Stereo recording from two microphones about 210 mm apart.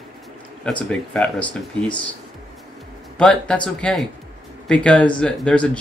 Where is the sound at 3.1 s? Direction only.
5° left (ahead or behind).